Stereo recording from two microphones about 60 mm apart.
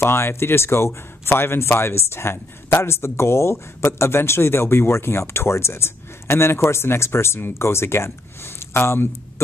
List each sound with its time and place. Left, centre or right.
0.0 s speech: left